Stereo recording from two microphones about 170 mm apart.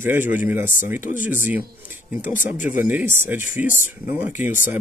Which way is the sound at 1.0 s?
50° left (ahead or behind).